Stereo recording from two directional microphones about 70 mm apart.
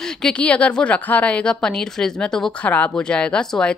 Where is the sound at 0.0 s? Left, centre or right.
Centre.